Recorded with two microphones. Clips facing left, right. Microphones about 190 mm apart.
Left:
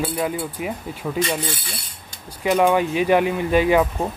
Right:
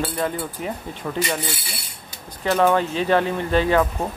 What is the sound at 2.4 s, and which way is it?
Speech, 10° left (ahead or behind).